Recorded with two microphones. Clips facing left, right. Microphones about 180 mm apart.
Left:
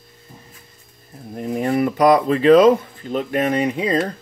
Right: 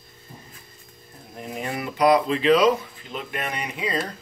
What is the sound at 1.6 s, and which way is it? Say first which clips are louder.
Speech: left 5 dB; 45° left (ahead or behind).